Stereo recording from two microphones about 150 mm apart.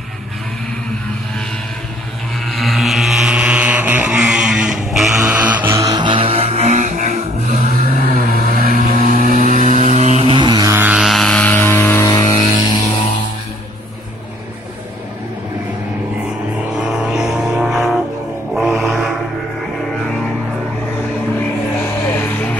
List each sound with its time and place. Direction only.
2.4 s vehicle: centre (ahead or behind); by 8.0 s 50° right (ahead or behind)
8.4 s vehicle: 70° right (ahead or behind); by 10.3 s 50° right (ahead or behind)
10.3 s a sound: 30° right (ahead or behind)
10.7 s vehicle: 10° right (ahead or behind); by 12.4 s 25° left (ahead or behind)
16.7 s music: 10° right (ahead or behind)
22.0 s vehicle: 15° left (ahead or behind)